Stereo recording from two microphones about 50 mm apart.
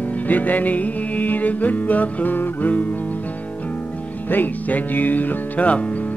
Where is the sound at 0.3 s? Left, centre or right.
Left.